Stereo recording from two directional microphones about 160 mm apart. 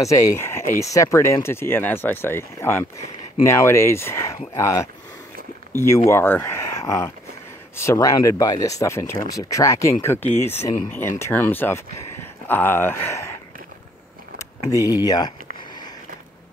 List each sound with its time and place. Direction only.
0.0 s speech: 20° left (ahead or behind)
14.7 s speech: 20° left (ahead or behind)